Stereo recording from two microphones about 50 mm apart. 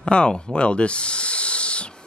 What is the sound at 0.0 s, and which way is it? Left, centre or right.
Speech, centre.